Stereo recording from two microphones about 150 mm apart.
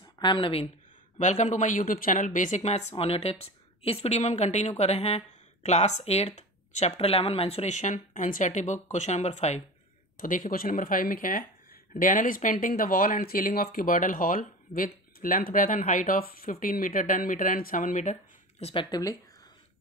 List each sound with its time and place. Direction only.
0.2 s a woman's voice: 35° left (ahead or behind)
1.1 s speech: 50° left (ahead or behind)
10.1 s speech: 65° left (ahead or behind)
18.6 s a woman's voice: 40° left (ahead or behind)
18.9 s speech: 25° left (ahead or behind)